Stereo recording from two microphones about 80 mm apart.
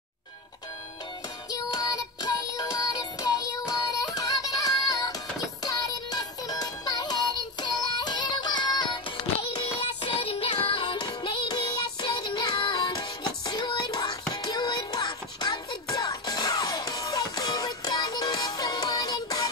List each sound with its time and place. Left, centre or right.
1.5 s music: left
13.8 s music: left